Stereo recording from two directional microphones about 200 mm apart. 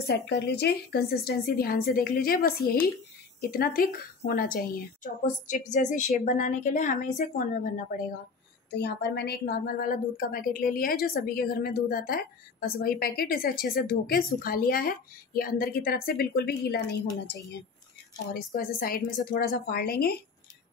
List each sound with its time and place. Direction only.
0.0 s a woman's voice: 55° left (ahead or behind); by 7.8 s 40° left (ahead or behind)
8.6 s a woman's voice: 55° left (ahead or behind)
18.3 s a woman's voice: 45° left (ahead or behind)